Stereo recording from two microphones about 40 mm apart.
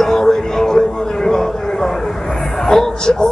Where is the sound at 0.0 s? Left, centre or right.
Centre.